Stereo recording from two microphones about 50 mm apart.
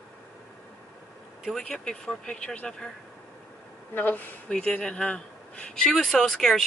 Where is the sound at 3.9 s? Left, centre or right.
Left.